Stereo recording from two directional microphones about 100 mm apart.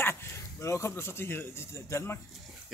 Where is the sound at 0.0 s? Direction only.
25° left (ahead or behind).